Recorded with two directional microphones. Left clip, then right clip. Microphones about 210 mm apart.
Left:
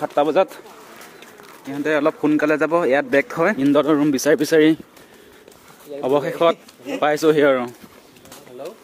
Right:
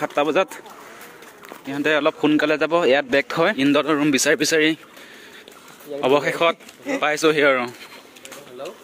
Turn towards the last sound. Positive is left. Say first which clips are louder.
# left 1 dB
turn(degrees=15)  # may be behind; listen again after turning